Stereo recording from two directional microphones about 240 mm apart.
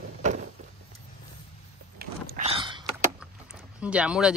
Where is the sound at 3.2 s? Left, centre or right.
Centre.